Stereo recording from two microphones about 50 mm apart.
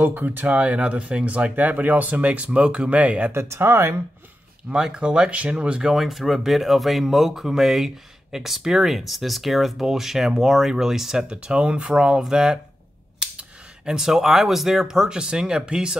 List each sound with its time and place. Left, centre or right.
0.0 s speech: right
3.3 s speech: right
4.6 s speech: centre
11.2 s speech: right